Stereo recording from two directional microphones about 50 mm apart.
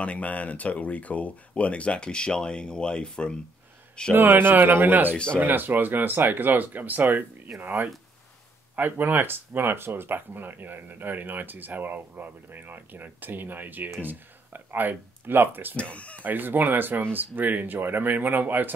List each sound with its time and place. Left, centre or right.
0.0 s speech: left
4.1 s speech: right
5.1 s speech: left
5.4 s speech: right
15.7 s speech: left
16.2 s speech: right